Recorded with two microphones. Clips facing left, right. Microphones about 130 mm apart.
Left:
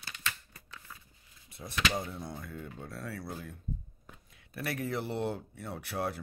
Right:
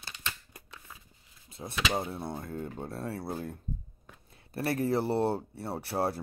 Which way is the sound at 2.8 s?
25° right (ahead or behind).